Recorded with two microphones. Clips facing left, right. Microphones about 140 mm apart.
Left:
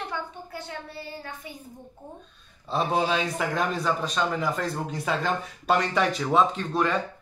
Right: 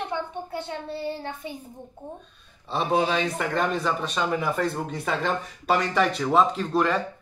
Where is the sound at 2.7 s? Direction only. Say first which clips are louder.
Right 1 dB; centre (ahead or behind).